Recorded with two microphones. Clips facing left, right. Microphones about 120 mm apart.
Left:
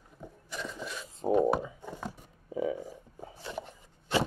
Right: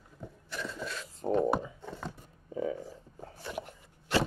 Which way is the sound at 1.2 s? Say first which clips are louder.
Left 2 dB; 15° left (ahead or behind).